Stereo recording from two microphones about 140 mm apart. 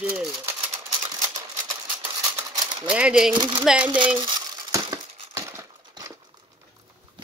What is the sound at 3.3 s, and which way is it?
Speech, 35° right (ahead or behind).